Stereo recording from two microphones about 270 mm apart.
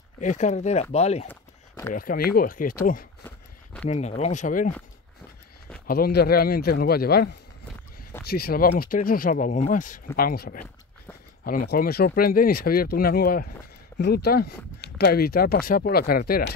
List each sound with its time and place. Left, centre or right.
0.2 s speech: left
1.3 s a sound: centre
2.0 s speech: left
3.3 s a sound: centre
3.9 s speech: left
5.9 s speech: left
8.3 s speech: left